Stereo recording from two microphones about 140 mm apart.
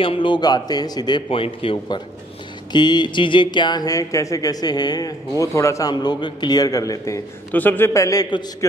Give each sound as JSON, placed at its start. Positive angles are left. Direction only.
{"t": 0.0, "sound": "speech", "side_deg": 40}
{"t": 7.5, "sound": "speech", "side_deg": 15}